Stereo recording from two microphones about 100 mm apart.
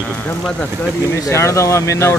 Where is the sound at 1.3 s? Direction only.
30° left (ahead or behind).